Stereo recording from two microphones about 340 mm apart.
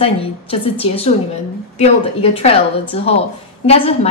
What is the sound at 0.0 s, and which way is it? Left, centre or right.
A woman's voice, centre.